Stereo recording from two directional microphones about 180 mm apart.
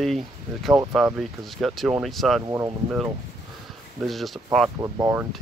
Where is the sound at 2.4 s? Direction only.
20° right (ahead or behind).